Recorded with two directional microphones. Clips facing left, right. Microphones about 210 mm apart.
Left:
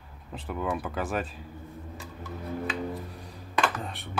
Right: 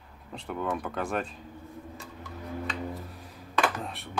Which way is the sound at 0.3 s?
5° left (ahead or behind).